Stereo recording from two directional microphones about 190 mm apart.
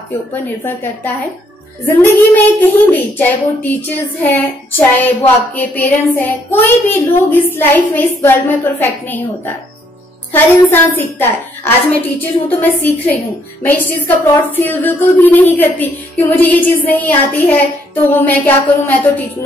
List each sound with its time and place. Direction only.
0.3 s a woman's voice: 10° left (ahead or behind)
10.3 s a woman's voice: 10° left (ahead or behind)